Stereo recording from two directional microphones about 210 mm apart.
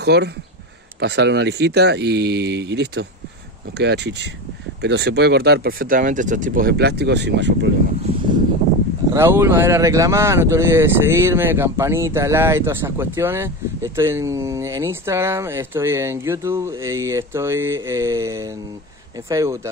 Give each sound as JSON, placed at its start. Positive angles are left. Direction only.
{"t": 0.0, "sound": "speech", "side_deg": -50}
{"t": 9.1, "sound": "speech", "side_deg": -10}